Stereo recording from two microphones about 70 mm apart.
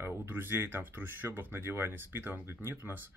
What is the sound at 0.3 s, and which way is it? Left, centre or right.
Speech, right.